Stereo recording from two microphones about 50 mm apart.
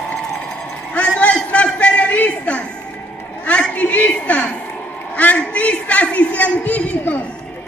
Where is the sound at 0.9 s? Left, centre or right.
Left.